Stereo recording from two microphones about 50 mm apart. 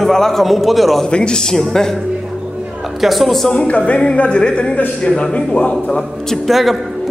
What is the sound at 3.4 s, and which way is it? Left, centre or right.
A woman's voice, left.